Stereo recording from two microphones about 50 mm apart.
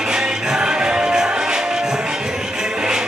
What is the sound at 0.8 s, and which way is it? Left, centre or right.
Music, centre.